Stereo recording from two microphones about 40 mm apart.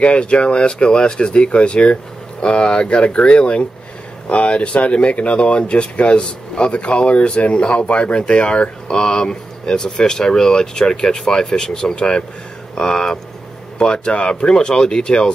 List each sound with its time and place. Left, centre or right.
0.0 s speech: left